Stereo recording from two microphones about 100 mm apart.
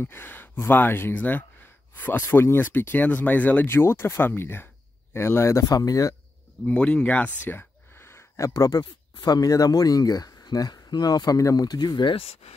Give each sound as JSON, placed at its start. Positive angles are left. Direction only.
{"t": 0.0, "sound": "speech", "side_deg": 20}
{"t": 6.6, "sound": "speech", "side_deg": 15}
{"t": 8.5, "sound": "speech", "side_deg": 40}